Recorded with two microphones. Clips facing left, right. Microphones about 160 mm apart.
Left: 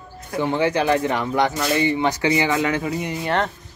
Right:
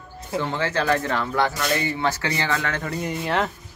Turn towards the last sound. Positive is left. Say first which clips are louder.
# left 1 dB
turn(degrees=0)  # may be behind; listen again after turning